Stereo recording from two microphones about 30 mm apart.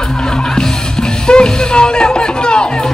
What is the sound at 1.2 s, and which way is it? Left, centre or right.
Music, left.